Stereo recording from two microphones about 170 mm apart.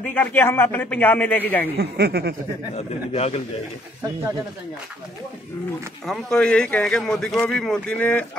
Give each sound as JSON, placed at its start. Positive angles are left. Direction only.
{"t": 0.0, "sound": "a man's voice", "side_deg": 10}
{"t": 1.8, "sound": "speech", "side_deg": -70}
{"t": 2.7, "sound": "a man's voice", "side_deg": 35}
{"t": 6.0, "sound": "a man's voice", "side_deg": 5}